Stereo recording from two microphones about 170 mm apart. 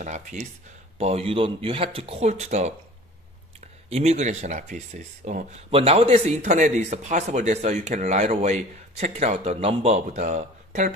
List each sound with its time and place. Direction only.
0.0 s speech: 45° right (ahead or behind)
3.9 s speech: 40° right (ahead or behind)